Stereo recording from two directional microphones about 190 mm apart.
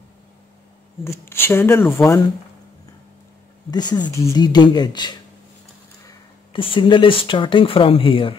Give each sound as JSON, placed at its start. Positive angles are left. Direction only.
{"t": 1.0, "sound": "speech", "side_deg": 15}
{"t": 3.7, "sound": "speech", "side_deg": 20}